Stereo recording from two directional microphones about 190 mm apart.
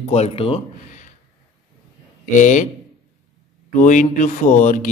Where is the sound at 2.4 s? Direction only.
40° left (ahead or behind).